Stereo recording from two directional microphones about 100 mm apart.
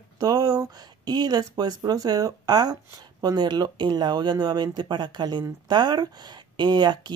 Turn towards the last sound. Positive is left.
turn(degrees=-45)  # may be behind; listen again after turning